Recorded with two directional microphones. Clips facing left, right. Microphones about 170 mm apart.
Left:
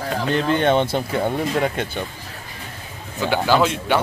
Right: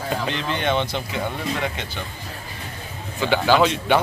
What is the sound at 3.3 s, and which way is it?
Speech, 5° left (ahead or behind).